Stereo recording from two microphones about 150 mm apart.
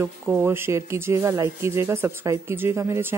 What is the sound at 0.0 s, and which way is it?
Speech, 15° right (ahead or behind).